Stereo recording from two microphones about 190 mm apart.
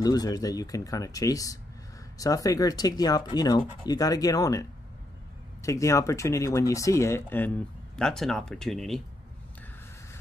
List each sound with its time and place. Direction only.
0.0 s speech: 20° left (ahead or behind); by 9.0 s centre (ahead or behind)